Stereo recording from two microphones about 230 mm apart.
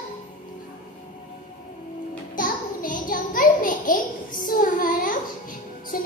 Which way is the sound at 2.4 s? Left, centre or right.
Left.